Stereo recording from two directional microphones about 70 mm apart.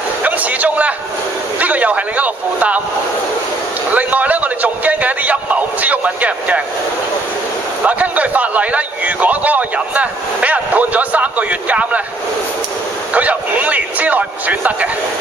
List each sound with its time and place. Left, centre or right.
0.2 s a sound: right
1.6 s a man's voice: right
3.9 s a man's voice: right
7.8 s a man's voice: right
13.1 s a man's voice: right